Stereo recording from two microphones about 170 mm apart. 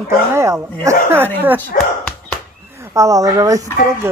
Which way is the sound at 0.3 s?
15° right (ahead or behind).